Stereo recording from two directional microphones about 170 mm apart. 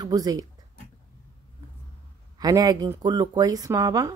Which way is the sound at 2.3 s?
20° right (ahead or behind).